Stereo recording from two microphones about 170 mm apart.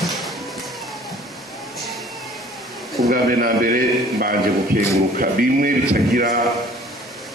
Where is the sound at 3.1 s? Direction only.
55° right (ahead or behind).